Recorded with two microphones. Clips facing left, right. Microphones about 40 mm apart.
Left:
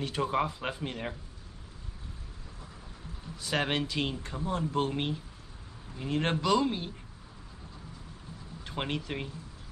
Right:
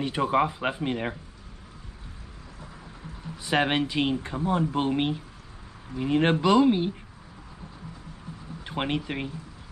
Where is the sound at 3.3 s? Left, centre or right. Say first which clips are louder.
Right 6 dB; right.